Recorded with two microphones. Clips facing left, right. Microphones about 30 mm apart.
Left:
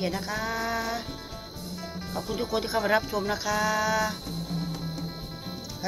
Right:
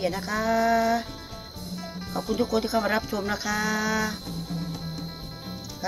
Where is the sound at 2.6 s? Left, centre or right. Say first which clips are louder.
Even; centre.